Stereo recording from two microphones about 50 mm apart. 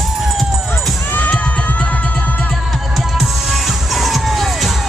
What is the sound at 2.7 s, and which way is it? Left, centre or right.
Music, centre.